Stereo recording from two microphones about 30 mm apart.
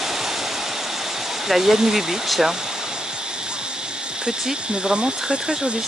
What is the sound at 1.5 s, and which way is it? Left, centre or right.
Speech, centre.